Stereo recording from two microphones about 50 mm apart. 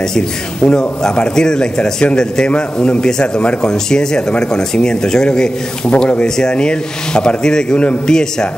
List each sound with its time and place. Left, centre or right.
0.7 s speech: centre